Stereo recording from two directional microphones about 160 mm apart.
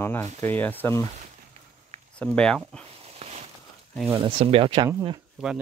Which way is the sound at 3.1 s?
40° right (ahead or behind).